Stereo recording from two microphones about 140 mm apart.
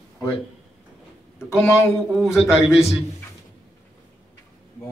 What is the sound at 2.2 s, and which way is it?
Speech, 5° right (ahead or behind).